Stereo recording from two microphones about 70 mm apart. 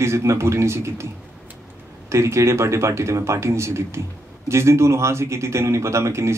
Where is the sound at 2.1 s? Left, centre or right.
Right.